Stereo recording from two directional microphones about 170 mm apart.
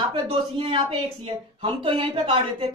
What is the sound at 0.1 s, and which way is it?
Speech, 30° right (ahead or behind).